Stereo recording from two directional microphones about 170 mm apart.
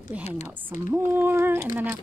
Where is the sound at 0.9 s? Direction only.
10° right (ahead or behind).